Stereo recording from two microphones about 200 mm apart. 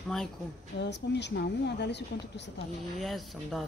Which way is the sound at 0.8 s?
60° left (ahead or behind).